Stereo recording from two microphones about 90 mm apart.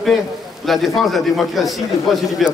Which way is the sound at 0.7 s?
Centre (ahead or behind).